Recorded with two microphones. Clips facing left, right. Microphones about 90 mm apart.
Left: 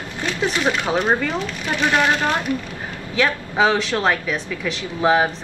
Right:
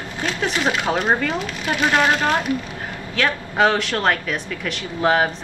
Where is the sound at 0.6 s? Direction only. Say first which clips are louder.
Even; 20° right (ahead or behind).